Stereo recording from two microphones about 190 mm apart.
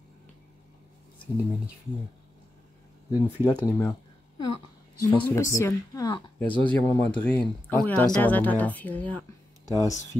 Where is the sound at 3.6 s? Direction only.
15° left (ahead or behind).